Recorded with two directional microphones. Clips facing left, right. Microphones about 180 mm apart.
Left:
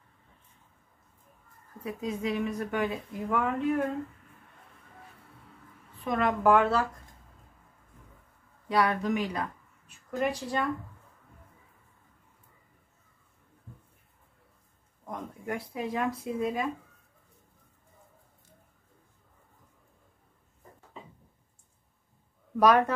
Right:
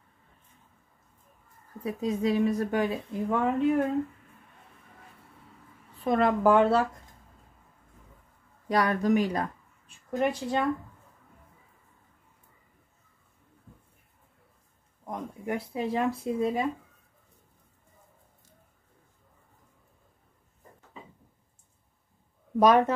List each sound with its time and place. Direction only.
1.8 s a woman's voice: 35° right (ahead or behind)
6.0 s a woman's voice: 35° right (ahead or behind)
8.6 s speech: 45° right (ahead or behind)
10.1 s speech: 20° right (ahead or behind)
15.0 s speech: 25° right (ahead or behind)
22.6 s speech: 25° right (ahead or behind)